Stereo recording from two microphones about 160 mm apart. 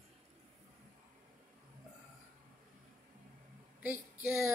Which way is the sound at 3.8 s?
10° right (ahead or behind).